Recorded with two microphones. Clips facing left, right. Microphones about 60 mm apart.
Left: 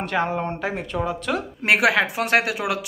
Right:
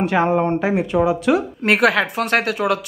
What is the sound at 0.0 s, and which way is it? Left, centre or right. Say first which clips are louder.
Speech: right 7 dB; centre.